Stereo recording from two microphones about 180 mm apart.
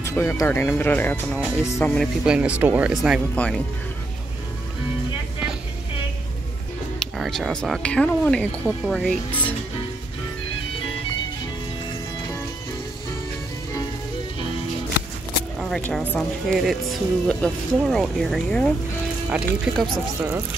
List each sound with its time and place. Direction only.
0.0 s speech: 15° left (ahead or behind)
2.0 s speech: 5° right (ahead or behind)
7.0 s speech: 5° left (ahead or behind)
15.7 s speech: centre (ahead or behind)